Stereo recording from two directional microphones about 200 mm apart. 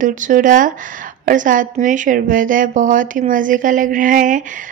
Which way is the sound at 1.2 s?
40° right (ahead or behind).